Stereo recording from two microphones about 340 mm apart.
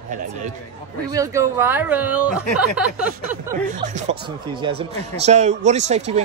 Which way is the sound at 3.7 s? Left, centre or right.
Centre.